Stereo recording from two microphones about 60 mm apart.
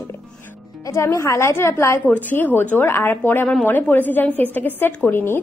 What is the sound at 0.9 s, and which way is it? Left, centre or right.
A woman's voice, left.